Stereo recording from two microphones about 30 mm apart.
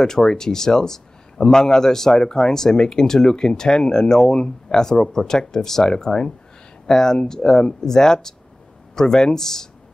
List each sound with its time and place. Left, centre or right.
0.0 s a man's voice: left